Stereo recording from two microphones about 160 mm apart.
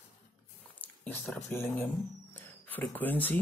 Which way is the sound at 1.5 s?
15° left (ahead or behind).